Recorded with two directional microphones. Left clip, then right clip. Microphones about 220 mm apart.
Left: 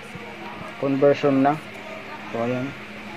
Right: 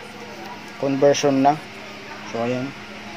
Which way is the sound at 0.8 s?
10° right (ahead or behind).